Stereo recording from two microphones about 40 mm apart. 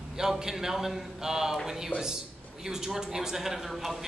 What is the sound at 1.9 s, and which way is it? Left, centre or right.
Speech, left.